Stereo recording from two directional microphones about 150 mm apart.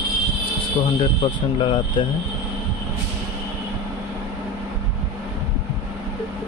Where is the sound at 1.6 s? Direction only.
30° left (ahead or behind).